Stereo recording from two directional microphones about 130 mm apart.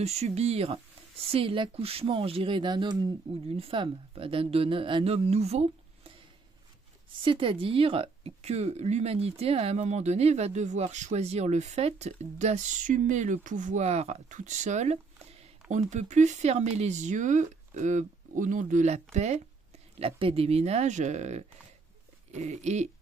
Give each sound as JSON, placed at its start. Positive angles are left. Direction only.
{"t": 0.0, "sound": "speech", "side_deg": -55}
{"t": 3.4, "sound": "a woman's voice", "side_deg": -50}
{"t": 7.2, "sound": "speech", "side_deg": -45}
{"t": 20.0, "sound": "speech", "side_deg": -45}